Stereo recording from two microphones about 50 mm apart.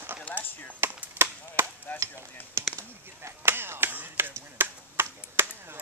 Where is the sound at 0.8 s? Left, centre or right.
Right.